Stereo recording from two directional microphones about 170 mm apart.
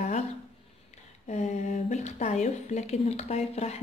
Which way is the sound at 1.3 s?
45° left (ahead or behind).